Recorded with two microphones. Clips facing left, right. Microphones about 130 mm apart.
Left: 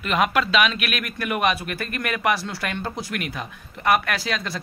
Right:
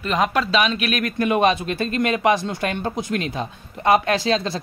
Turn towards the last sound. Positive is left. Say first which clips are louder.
# right 7 dB
turn(degrees=-25)  # may be behind; listen again after turning